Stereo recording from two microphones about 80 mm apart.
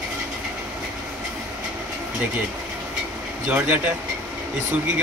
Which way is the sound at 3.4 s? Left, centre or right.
Right.